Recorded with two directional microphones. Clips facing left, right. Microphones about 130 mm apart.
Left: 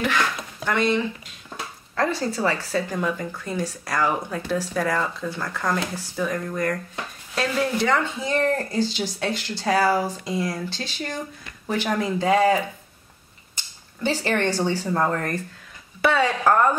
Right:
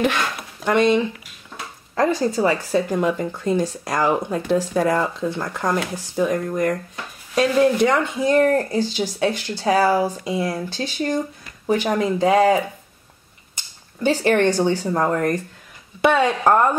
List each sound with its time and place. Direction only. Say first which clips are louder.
0.7 s speech: right 5 dB; 20° right (ahead or behind)
14.2 s speech: right 6 dB; 15° right (ahead or behind)